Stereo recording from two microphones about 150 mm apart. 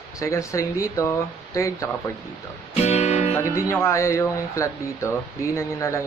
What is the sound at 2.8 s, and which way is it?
Music, 45° left (ahead or behind).